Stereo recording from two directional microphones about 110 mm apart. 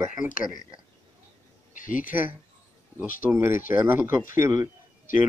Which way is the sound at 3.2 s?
25° right (ahead or behind).